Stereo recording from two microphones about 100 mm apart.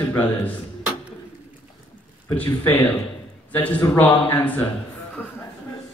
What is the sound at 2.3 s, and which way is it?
A man's voice, 15° left (ahead or behind).